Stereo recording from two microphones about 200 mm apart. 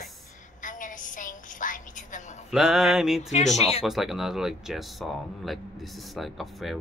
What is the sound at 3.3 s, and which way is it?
Speech, 35° left (ahead or behind).